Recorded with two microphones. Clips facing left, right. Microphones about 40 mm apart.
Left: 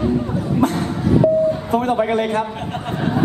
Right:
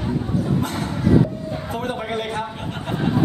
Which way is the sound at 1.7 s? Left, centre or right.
Left.